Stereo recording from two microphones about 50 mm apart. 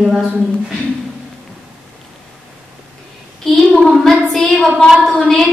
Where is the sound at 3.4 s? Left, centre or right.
Centre.